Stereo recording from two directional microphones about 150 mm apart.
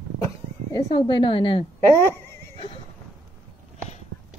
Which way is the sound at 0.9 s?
35° left (ahead or behind).